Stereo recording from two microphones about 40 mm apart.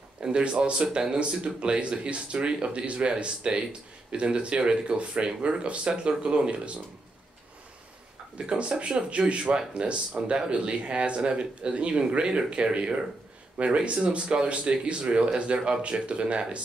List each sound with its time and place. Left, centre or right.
0.2 s speech: right
8.4 s speech: right